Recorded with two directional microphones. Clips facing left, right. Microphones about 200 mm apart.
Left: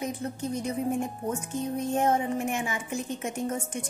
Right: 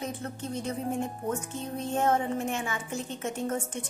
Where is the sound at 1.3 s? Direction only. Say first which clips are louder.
Left 2 dB; 15° left (ahead or behind).